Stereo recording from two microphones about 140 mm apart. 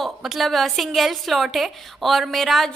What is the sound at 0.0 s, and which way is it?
A woman's voice, centre (ahead or behind).